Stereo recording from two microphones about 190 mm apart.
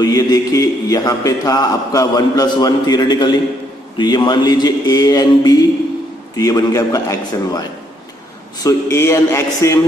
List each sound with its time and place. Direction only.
0.0 s a man's voice: 20° left (ahead or behind)
8.6 s a man's voice: 15° left (ahead or behind)